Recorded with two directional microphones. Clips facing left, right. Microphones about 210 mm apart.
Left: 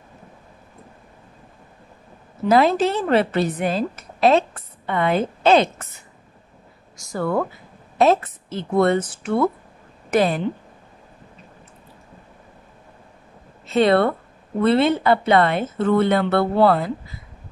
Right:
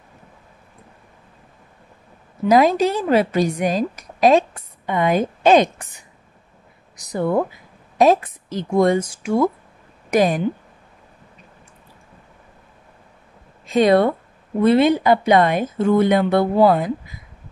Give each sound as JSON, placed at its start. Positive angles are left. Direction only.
{"t": 2.4, "sound": "a woman's voice", "side_deg": -15}
{"t": 13.7, "sound": "speech", "side_deg": -15}